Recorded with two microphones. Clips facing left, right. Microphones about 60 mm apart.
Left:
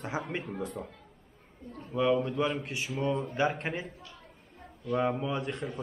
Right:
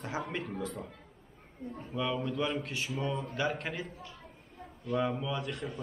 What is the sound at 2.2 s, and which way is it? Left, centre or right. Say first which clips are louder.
Speech: left 2 dB; left.